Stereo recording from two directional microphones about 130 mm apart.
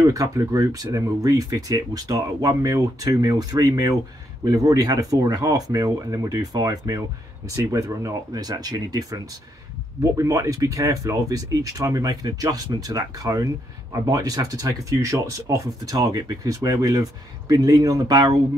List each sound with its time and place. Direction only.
0.0 s speech: 25° right (ahead or behind)